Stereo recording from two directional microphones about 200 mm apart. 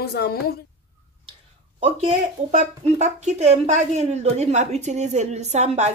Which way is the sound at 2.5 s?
35° right (ahead or behind).